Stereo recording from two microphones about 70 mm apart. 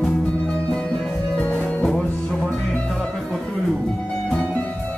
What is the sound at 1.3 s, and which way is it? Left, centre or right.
Music, left.